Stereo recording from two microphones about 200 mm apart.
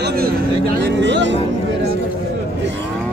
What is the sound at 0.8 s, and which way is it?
Speech, 60° right (ahead or behind).